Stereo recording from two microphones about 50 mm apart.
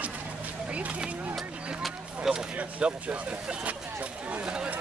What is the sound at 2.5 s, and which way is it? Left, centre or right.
Speech, right.